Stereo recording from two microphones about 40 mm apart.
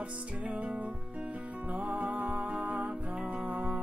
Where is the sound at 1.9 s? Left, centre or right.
Right.